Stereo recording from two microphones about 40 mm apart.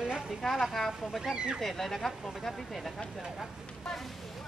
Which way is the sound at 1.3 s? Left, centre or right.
Right.